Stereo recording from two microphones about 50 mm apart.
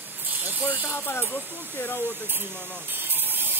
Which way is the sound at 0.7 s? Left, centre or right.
Left.